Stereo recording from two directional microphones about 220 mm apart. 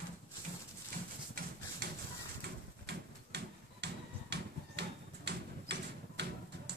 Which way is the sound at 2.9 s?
50° right (ahead or behind).